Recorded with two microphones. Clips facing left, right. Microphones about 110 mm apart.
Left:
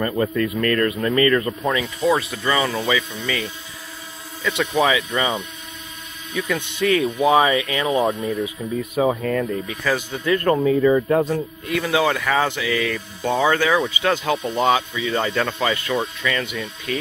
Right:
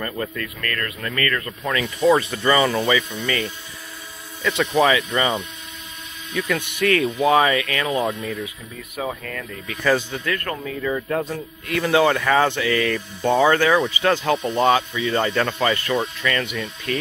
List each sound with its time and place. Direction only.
0.0 s speech: 20° left (ahead or behind)
1.8 s speech: centre (ahead or behind)
7.5 s speech: 25° left (ahead or behind)
8.0 s speech: centre (ahead or behind)
8.9 s speech: 25° left (ahead or behind)
9.8 s speech: centre (ahead or behind)
10.2 s speech: 20° left (ahead or behind)
11.7 s speech: centre (ahead or behind)